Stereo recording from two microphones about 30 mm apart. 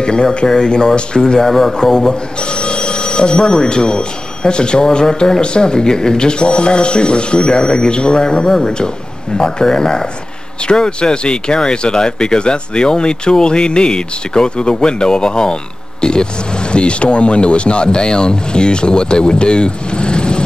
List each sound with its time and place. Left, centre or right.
0.0 s speech: left
1.4 s speech: centre
2.5 s speech: left